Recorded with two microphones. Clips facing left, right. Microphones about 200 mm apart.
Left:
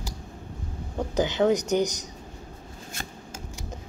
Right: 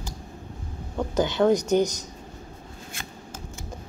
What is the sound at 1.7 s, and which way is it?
Speech, 15° left (ahead or behind).